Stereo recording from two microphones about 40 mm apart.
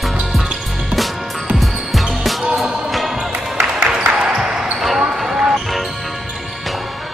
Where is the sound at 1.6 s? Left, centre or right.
Centre.